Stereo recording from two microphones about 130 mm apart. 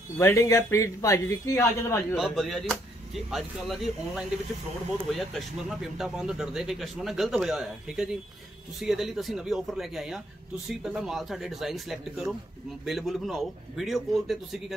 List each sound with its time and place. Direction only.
0.2 s speech: 25° left (ahead or behind)
2.1 s speech: centre (ahead or behind)